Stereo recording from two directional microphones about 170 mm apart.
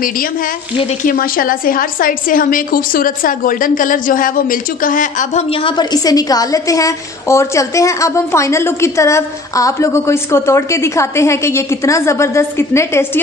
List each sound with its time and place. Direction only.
1.0 s a woman's voice: 55° left (ahead or behind)
5.5 s a woman's voice: 30° left (ahead or behind); by 13.2 s 15° left (ahead or behind)